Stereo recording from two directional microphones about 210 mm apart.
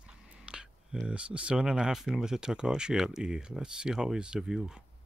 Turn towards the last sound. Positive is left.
turn(degrees=0)  # may be behind; listen again after turning